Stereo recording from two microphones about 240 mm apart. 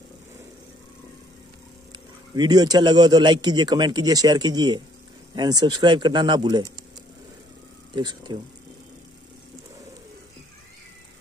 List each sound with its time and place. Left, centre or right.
1.9 s speech: centre
7.9 s speech: centre